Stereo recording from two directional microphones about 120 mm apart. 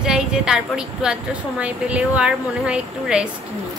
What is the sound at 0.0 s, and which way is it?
A woman's voice, 5° right (ahead or behind).